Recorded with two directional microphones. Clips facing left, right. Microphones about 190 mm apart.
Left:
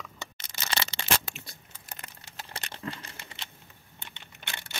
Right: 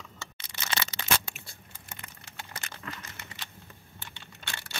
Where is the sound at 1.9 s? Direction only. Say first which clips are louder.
Left 2 dB; 35° left (ahead or behind).